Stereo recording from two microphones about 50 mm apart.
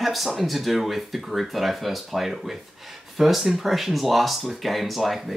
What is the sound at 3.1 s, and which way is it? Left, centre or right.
Speech, centre.